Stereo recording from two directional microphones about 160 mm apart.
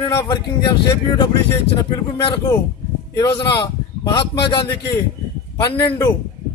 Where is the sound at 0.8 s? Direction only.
25° left (ahead or behind).